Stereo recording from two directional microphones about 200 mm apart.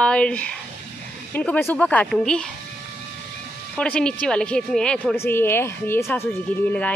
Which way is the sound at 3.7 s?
5° left (ahead or behind).